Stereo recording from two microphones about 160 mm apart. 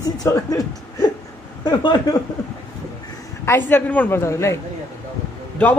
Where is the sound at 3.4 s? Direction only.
15° left (ahead or behind).